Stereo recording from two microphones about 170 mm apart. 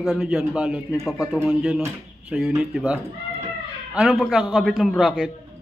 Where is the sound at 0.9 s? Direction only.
15° left (ahead or behind).